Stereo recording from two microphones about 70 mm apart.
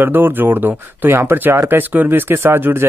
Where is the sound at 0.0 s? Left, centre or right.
Right.